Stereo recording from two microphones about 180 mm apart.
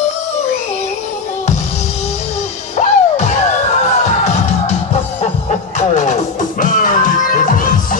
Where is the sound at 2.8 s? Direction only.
40° left (ahead or behind).